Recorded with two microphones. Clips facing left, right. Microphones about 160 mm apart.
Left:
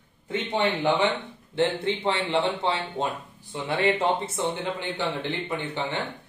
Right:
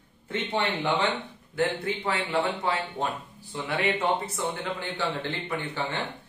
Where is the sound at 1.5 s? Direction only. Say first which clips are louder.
Left 3 dB; 25° left (ahead or behind).